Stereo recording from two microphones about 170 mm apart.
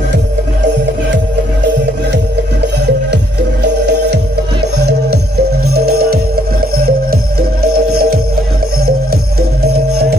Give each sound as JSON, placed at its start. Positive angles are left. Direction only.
{"t": 5.7, "sound": "music", "side_deg": -65}
{"t": 9.6, "sound": "music", "side_deg": -70}